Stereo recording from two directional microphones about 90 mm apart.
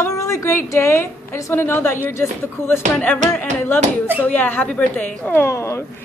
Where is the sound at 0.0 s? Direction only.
35° left (ahead or behind).